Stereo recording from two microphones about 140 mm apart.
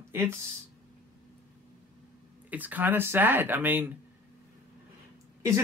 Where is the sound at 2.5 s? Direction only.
10° right (ahead or behind).